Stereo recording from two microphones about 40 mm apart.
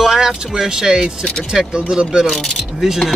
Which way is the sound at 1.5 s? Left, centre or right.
Centre.